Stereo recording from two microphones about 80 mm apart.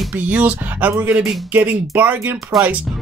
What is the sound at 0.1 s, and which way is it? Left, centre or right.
Speech, centre.